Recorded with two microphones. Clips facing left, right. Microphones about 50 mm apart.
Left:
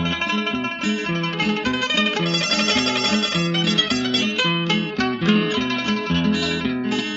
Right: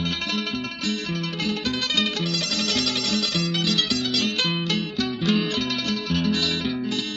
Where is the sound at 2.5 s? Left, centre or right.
Left.